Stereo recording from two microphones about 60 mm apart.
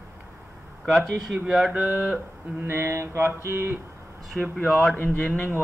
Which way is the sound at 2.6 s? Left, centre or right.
Right.